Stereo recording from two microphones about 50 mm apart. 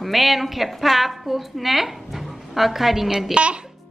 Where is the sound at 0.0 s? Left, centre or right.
Centre.